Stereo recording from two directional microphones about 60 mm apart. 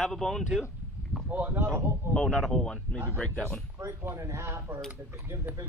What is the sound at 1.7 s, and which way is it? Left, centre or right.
Speech, right.